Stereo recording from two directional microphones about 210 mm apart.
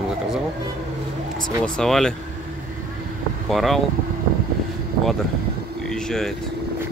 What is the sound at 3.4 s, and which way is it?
Speech, centre (ahead or behind).